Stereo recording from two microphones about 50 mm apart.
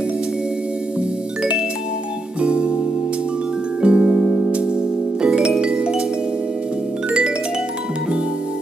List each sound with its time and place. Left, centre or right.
2.4 s music: right
3.8 s music: centre
7.1 s music: centre